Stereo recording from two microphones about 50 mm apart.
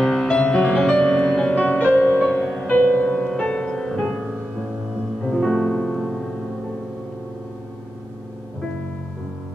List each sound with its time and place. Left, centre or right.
0.0 s music: centre
1.5 s music: left; by 4.2 s centre
5.3 s music: centre
5.9 s piano: centre